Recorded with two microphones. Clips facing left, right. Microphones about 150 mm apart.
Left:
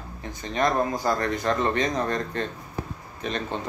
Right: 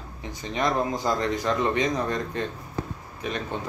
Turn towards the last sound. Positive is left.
turn(degrees=-10)  # may be behind; listen again after turning